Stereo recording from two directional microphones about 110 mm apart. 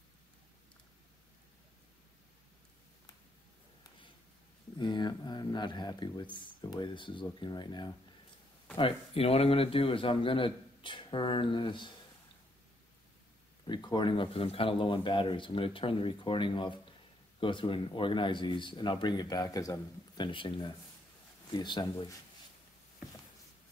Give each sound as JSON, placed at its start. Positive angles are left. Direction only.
{"t": 4.7, "sound": "a man's voice", "side_deg": 40}
{"t": 8.7, "sound": "a man's voice", "side_deg": 60}
{"t": 13.7, "sound": "a man's voice", "side_deg": 45}
{"t": 20.2, "sound": "a man's voice", "side_deg": 45}